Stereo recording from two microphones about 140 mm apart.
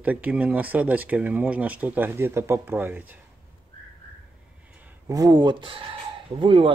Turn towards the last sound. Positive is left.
turn(degrees=-35)  # may be behind; listen again after turning